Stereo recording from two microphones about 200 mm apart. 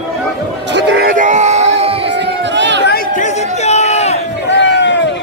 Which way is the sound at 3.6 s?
35° left (ahead or behind).